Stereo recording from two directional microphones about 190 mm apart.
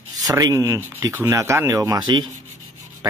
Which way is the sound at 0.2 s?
20° right (ahead or behind).